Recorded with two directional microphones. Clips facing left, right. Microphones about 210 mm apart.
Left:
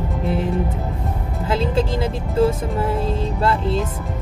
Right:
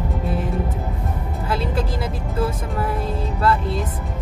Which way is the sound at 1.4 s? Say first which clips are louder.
Left 4 dB; 25° left (ahead or behind).